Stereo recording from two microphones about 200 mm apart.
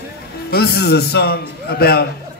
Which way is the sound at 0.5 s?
50° left (ahead or behind).